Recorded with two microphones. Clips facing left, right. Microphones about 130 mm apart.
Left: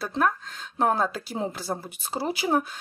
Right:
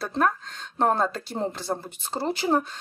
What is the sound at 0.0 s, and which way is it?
Speech, centre (ahead or behind).